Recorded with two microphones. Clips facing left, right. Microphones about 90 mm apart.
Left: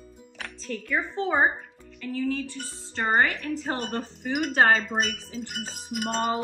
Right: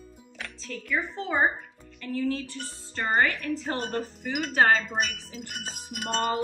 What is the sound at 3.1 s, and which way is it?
Speech, 30° left (ahead or behind).